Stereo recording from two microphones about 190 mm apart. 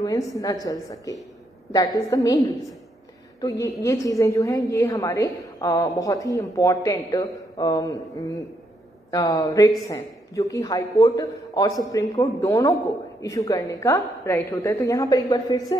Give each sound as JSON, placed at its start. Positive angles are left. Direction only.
{"t": 0.0, "sound": "a woman's voice", "side_deg": 20}
{"t": 9.1, "sound": "a woman's voice", "side_deg": 20}